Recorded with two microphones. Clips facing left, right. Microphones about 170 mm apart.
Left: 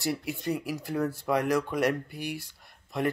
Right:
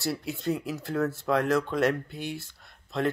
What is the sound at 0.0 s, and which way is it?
Speech, 15° left (ahead or behind).